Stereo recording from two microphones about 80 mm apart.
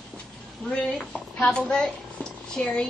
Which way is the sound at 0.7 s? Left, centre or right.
Centre.